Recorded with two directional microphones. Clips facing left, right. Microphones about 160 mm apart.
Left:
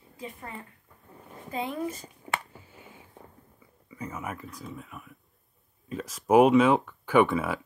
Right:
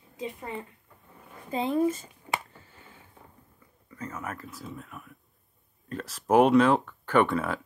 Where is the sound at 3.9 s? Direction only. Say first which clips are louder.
Left 1 dB; 10° left (ahead or behind).